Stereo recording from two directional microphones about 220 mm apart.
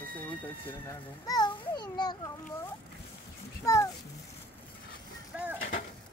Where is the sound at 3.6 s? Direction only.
15° left (ahead or behind).